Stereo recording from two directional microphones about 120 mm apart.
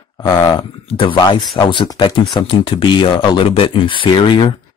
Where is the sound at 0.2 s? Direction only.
35° left (ahead or behind).